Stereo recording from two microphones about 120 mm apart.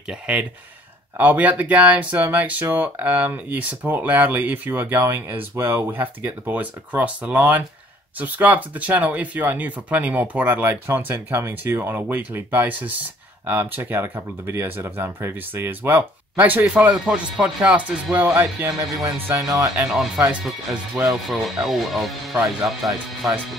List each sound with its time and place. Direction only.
0.1 s speech: 10° right (ahead or behind); by 19.7 s 25° right (ahead or behind)
19.9 s speech: 10° right (ahead or behind)